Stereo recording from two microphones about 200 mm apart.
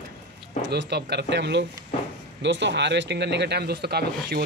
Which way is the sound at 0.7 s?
55° right (ahead or behind).